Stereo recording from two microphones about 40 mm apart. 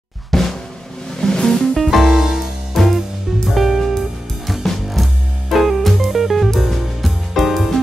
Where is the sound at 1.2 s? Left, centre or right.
Centre.